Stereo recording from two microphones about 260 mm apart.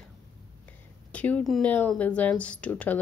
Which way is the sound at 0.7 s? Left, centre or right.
Centre.